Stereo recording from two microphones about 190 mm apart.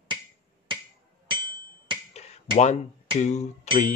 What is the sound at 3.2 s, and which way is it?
Speech, 35° left (ahead or behind).